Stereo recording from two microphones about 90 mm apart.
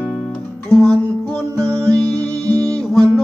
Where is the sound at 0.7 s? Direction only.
10° left (ahead or behind).